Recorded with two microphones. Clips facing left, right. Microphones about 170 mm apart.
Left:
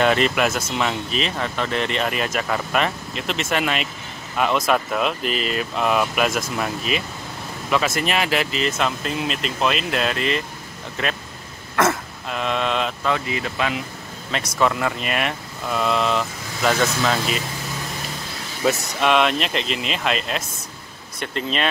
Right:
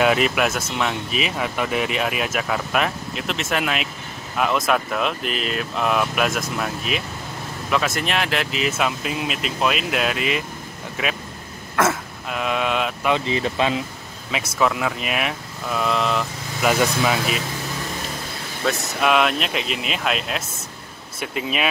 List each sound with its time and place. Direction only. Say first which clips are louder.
0.0 s speech: even; 5° right (ahead or behind)
11.7 s throat clearing: left 1 dB; 5° right (ahead or behind)
13.1 s speech: right 3 dB; 25° right (ahead or behind)
14.3 s speech: even; 5° right (ahead or behind)
18.6 s speech: left 2 dB; centre (ahead or behind)